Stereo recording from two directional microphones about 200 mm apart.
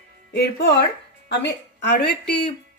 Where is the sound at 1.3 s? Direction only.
55° left (ahead or behind).